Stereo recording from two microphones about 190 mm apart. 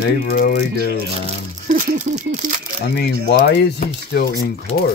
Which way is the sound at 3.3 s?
55° left (ahead or behind).